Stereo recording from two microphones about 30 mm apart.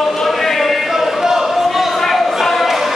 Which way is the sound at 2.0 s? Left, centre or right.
Centre.